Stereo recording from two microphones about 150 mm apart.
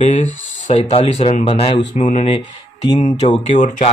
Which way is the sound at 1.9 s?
55° left (ahead or behind).